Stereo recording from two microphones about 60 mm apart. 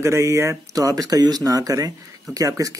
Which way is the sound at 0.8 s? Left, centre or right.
Right.